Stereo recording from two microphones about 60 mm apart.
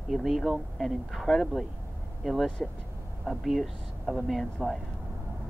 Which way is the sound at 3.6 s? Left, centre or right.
Centre.